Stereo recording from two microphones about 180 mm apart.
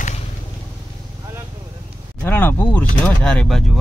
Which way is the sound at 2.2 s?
10° left (ahead or behind).